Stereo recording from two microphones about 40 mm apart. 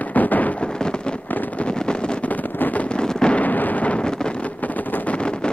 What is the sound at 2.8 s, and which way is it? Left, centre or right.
Fireworks, left.